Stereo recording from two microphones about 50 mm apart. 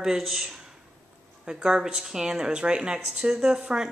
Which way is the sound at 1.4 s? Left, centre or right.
Centre.